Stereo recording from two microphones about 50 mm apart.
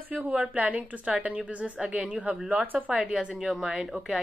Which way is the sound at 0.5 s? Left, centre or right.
Right.